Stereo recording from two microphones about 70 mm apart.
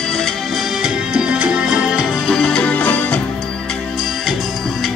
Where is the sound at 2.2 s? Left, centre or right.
Centre.